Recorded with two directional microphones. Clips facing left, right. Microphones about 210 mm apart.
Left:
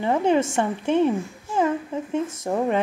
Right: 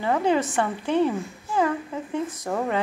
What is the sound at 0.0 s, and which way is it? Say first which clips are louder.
Speech: left 2 dB; 20° left (ahead or behind).